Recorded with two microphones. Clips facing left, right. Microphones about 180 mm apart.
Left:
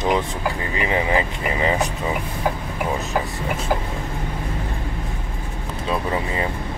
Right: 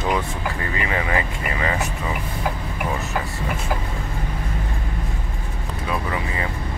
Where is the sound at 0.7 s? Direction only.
20° left (ahead or behind).